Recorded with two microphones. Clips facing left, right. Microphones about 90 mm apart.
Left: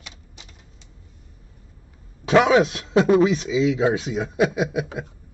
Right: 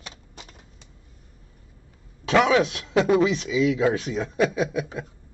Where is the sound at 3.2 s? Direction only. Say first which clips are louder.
Left 3 dB; 35° left (ahead or behind).